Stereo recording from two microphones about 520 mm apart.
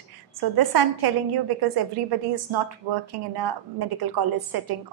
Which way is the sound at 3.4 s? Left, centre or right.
Right.